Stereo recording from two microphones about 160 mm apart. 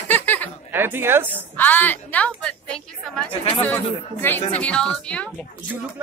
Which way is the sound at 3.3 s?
35° left (ahead or behind).